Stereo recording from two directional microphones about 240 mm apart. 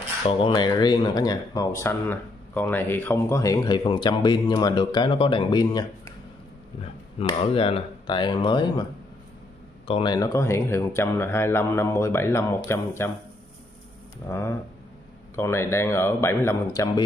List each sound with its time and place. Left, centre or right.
0.2 s speech: left
7.2 s speech: left
9.8 s speech: left
14.2 s speech: centre